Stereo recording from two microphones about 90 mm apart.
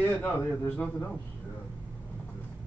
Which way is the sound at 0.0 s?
15° left (ahead or behind).